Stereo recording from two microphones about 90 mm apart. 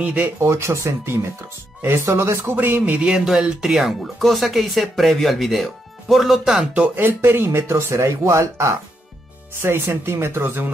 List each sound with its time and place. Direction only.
0.0 s speech: 20° right (ahead or behind)
0.4 s speech: 30° right (ahead or behind)
2.8 s speech: 10° right (ahead or behind)
6.7 s speech: 20° right (ahead or behind)